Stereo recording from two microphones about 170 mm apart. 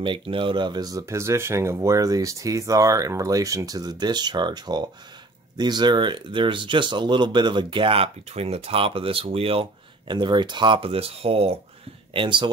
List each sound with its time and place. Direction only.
0.0 s speech: 30° right (ahead or behind)